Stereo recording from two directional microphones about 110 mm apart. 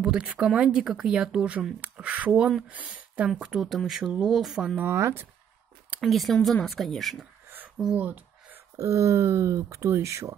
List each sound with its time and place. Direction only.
0.0 s speech: 5° right (ahead or behind)
4.7 s speech: 20° right (ahead or behind)
5.9 s a woman's voice: centre (ahead or behind)
7.4 s a sound: 15° right (ahead or behind)
8.7 s speech: 30° right (ahead or behind)